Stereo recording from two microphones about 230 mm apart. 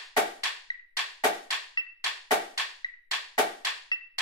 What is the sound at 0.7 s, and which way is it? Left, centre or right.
Music, centre.